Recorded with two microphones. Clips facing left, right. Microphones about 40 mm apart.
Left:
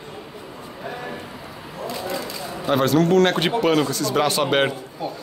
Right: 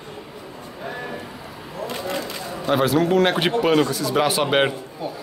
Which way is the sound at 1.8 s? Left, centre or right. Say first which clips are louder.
Even; right.